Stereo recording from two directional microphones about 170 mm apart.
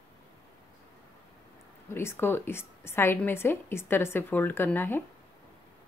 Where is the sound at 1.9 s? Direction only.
15° left (ahead or behind).